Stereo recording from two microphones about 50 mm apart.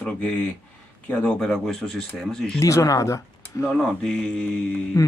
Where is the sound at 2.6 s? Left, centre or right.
Left.